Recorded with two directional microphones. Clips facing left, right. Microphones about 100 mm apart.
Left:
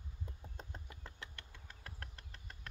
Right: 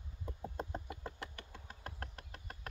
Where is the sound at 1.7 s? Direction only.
35° right (ahead or behind).